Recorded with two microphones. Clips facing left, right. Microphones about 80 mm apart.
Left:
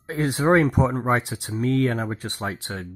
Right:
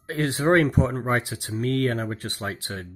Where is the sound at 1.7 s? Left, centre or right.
Centre.